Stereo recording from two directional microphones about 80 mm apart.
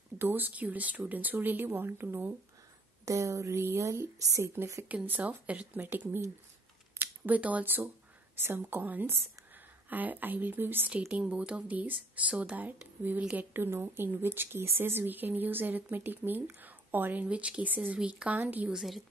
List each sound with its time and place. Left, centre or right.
0.2 s speech: right
3.1 s a woman's voice: right
4.8 s speech: right
10.9 s speech: centre
13.5 s speech: right
18.7 s a woman's voice: centre